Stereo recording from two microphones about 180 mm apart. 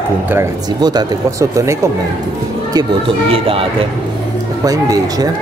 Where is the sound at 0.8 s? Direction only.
25° right (ahead or behind).